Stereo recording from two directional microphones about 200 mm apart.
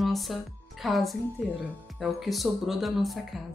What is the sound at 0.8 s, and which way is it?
Speech, centre (ahead or behind).